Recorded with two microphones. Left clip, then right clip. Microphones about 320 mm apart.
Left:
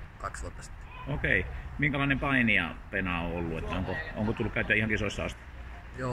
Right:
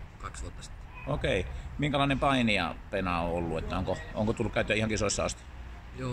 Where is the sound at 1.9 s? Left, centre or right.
Centre.